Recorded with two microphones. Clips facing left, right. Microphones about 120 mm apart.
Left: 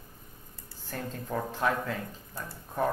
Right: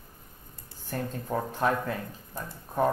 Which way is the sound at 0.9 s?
15° right (ahead or behind).